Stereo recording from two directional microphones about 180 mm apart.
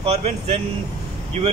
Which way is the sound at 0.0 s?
35° right (ahead or behind).